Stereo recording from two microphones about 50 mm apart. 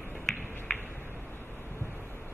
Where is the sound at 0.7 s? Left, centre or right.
Centre.